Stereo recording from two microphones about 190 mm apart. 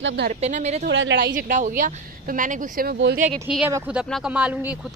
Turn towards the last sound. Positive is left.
turn(degrees=-5)  # may be behind; listen again after turning